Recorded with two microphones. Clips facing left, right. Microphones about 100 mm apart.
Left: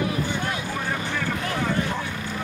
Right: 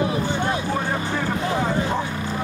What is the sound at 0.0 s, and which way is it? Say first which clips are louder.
Vehicle: right 4 dB; 25° right (ahead or behind).